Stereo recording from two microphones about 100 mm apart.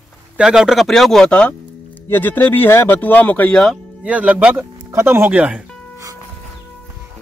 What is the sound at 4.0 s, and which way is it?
Speech, 15° right (ahead or behind).